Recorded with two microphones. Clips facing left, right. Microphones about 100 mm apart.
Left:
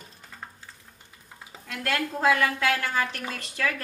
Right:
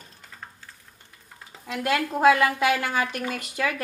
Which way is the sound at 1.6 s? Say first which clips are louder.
Right 4 dB; 20° right (ahead or behind).